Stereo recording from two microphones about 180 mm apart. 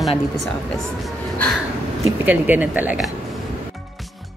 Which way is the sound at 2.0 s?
10° right (ahead or behind).